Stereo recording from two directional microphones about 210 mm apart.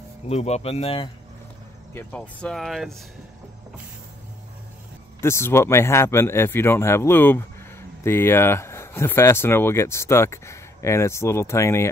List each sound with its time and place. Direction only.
0.3 s speech: 30° left (ahead or behind)
2.0 s speech: 5° left (ahead or behind)
5.2 s speech: 10° left (ahead or behind)